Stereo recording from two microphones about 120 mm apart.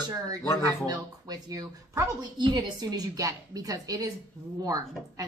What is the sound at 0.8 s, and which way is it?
Speech, 30° right (ahead or behind).